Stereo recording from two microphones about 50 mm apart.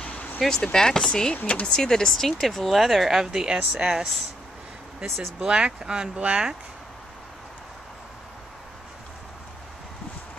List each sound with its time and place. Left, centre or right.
0.0 s a sound: left
0.4 s speech: centre
5.0 s speech: centre
5.4 s speech: centre